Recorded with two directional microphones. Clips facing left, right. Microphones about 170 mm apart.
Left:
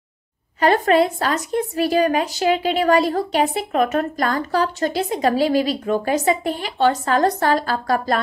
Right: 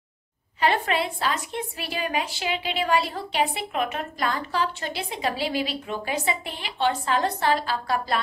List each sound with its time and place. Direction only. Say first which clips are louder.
0.6 s a woman's voice: left 8 dB; 45° left (ahead or behind)